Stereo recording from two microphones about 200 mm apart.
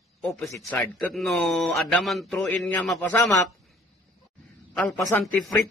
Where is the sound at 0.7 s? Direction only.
5° left (ahead or behind).